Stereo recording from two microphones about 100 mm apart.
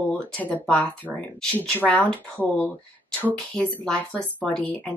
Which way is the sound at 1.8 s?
10° left (ahead or behind).